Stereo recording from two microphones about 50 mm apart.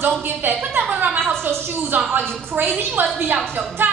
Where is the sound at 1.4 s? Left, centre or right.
Right.